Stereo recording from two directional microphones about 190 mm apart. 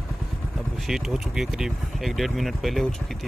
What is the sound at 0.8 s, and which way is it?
Speech, centre (ahead or behind).